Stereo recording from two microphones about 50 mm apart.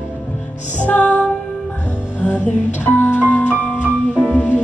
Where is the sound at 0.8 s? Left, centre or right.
Left.